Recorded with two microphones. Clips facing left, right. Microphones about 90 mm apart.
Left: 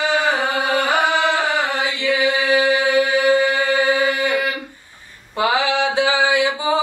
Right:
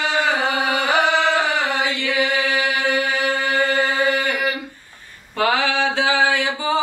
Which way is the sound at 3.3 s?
10° left (ahead or behind).